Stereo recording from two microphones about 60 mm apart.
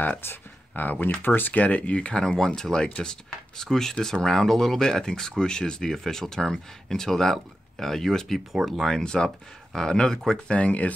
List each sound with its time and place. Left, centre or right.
0.2 s speech: left; by 10.4 s centre
10.5 s speech: left